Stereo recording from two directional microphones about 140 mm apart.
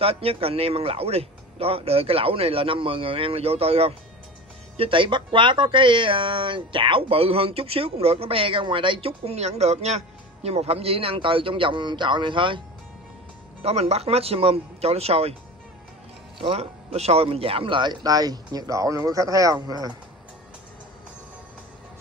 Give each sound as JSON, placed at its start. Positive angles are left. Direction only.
{"t": 0.0, "sound": "speech", "side_deg": -45}
{"t": 13.6, "sound": "speech", "side_deg": -50}
{"t": 16.3, "sound": "speech", "side_deg": -45}